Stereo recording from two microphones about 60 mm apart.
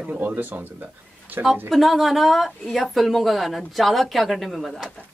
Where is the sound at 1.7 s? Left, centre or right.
Centre.